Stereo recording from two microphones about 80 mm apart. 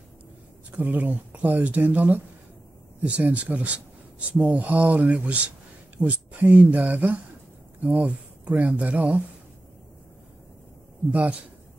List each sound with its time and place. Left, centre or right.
0.7 s speech: right
11.1 s speech: centre